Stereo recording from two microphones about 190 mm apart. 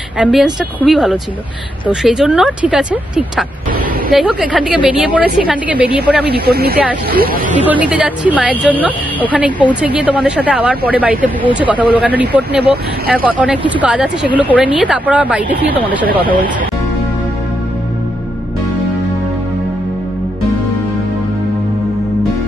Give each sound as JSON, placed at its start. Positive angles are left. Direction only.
{"t": 0.2, "sound": "speech", "side_deg": 0}
{"t": 6.2, "sound": "speech", "side_deg": -55}
{"t": 7.6, "sound": "speech", "side_deg": -5}